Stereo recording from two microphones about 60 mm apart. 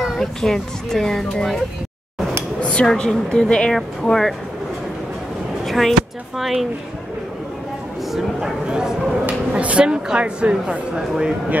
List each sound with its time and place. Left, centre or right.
0.0 s speech: centre
2.6 s dishes: centre
2.9 s speech: centre
5.7 s speech: centre
8.1 s speech: centre